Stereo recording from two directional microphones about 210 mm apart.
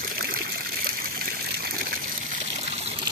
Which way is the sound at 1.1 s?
45° right (ahead or behind).